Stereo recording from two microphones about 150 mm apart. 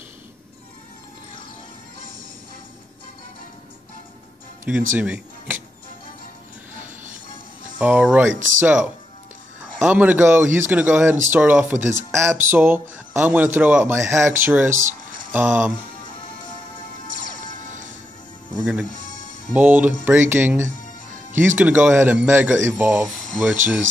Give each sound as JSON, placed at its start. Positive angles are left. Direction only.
{"t": 4.6, "sound": "speech", "side_deg": -5}
{"t": 7.8, "sound": "a man's voice", "side_deg": -10}
{"t": 19.5, "sound": "a man's voice", "side_deg": -10}